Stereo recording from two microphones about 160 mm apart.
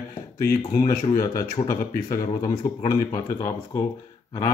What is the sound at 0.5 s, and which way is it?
Speech, 20° left (ahead or behind).